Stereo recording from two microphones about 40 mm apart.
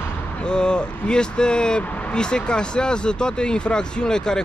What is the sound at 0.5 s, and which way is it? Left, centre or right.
Speech, left.